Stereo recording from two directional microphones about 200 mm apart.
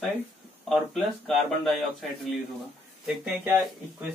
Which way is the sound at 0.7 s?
Centre (ahead or behind).